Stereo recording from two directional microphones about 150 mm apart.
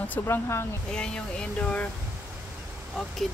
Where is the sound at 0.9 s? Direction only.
5° left (ahead or behind).